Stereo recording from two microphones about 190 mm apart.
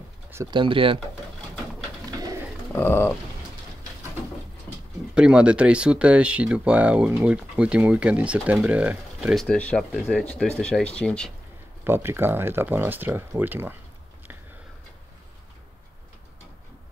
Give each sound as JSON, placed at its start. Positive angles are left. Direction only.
{"t": 0.3, "sound": "a sound", "side_deg": -15}
{"t": 0.6, "sound": "speech", "side_deg": -25}
{"t": 2.0, "sound": "bird", "side_deg": -20}
{"t": 2.8, "sound": "a sound", "side_deg": 10}
{"t": 5.1, "sound": "speech", "side_deg": -5}
{"t": 11.8, "sound": "speech", "side_deg": -10}